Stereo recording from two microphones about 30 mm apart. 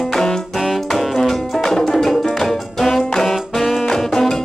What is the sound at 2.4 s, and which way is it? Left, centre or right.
Brass instrument, centre.